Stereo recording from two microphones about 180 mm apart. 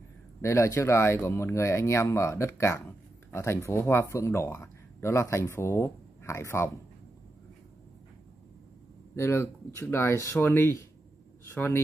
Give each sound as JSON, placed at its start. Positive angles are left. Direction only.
{"t": 0.4, "sound": "speech", "side_deg": 15}
{"t": 9.1, "sound": "speech", "side_deg": 15}